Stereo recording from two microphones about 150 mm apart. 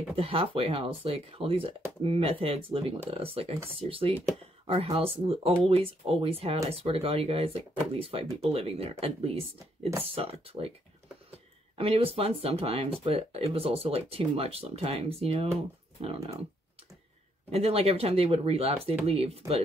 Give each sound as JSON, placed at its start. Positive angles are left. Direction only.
{"t": 0.1, "sound": "speech", "side_deg": -35}
{"t": 11.7, "sound": "speech", "side_deg": -40}
{"t": 17.5, "sound": "speech", "side_deg": -40}